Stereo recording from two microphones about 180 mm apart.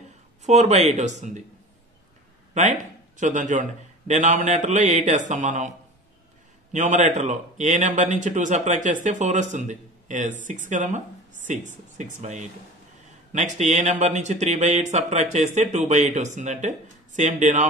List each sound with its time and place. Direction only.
0.4 s speech: 40° right (ahead or behind)
3.2 s a man's voice: 45° right (ahead or behind)
6.7 s a man's voice: 40° right (ahead or behind)